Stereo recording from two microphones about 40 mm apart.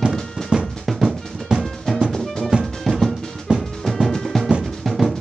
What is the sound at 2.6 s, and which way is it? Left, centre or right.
Music, centre.